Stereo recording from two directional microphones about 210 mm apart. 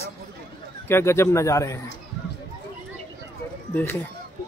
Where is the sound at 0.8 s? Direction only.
10° left (ahead or behind).